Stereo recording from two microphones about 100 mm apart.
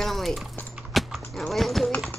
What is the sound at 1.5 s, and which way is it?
Speech, centre (ahead or behind).